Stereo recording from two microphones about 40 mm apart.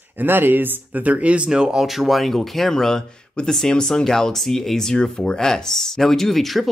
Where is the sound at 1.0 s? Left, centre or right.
Right.